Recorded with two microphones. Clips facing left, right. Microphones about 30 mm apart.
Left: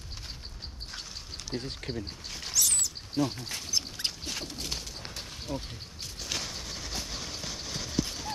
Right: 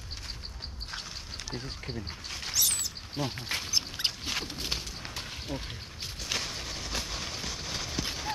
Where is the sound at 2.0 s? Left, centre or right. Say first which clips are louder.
Even; centre; by 3.7 s right.